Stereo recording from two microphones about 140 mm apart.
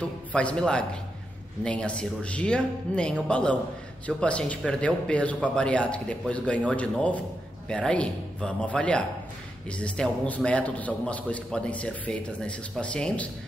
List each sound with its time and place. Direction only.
0.3 s a man's voice: 10° left (ahead or behind)